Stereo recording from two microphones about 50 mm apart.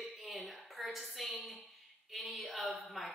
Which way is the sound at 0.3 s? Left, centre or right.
Centre.